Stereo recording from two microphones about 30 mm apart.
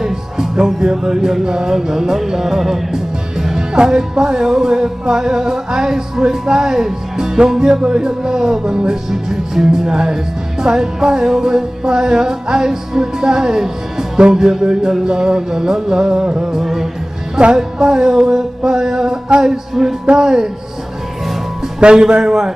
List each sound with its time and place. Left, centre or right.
0.0 s music: centre
16.5 s music: centre
20.1 s music: right
21.7 s speech: right
22.2 s music: right